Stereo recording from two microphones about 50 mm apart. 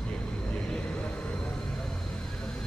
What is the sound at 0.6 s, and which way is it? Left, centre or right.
Vehicle, centre.